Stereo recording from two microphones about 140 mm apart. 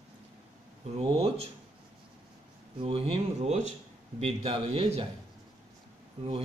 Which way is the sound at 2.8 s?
40° right (ahead or behind).